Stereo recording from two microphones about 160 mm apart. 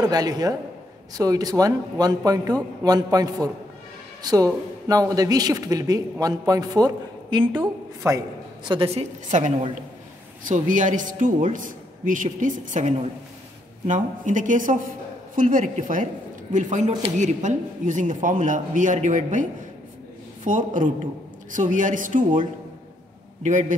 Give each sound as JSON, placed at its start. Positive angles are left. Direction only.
{"t": 0.1, "sound": "speech", "side_deg": -25}
{"t": 7.6, "sound": "a woman's voice", "side_deg": -20}
{"t": 8.6, "sound": "a woman's voice", "side_deg": -35}
{"t": 20.4, "sound": "speech", "side_deg": -55}